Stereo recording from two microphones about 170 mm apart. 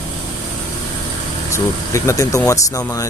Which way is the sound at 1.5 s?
15° left (ahead or behind).